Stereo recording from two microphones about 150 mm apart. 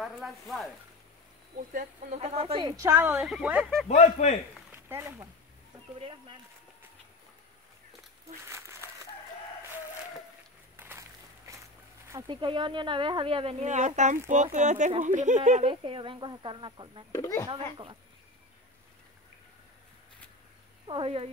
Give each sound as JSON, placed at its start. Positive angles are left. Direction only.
{"t": 0.0, "sound": "speech", "side_deg": 0}
{"t": 1.7, "sound": "a woman's voice", "side_deg": -55}
{"t": 2.6, "sound": "a woman's voice", "side_deg": -25}
{"t": 2.9, "sound": "speech", "side_deg": -10}
{"t": 3.9, "sound": "speech", "side_deg": 50}
{"t": 4.7, "sound": "speech", "side_deg": -15}
{"t": 5.9, "sound": "speech", "side_deg": -35}
{"t": 8.5, "sound": "a sound", "side_deg": -20}
{"t": 10.8, "sound": "walk", "side_deg": -20}
{"t": 12.3, "sound": "a woman's voice", "side_deg": -30}
{"t": 15.7, "sound": "speech", "side_deg": -35}
{"t": 17.1, "sound": "speech", "side_deg": 20}
{"t": 20.8, "sound": "speech", "side_deg": -35}